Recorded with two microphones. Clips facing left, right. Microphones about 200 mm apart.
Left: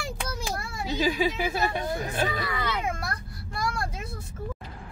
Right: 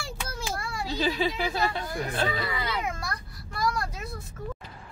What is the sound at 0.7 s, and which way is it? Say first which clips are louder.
Speech: left 2 dB; 20° left (ahead or behind).